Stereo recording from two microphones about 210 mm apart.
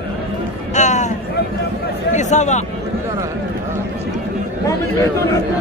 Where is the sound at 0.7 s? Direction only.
35° left (ahead or behind).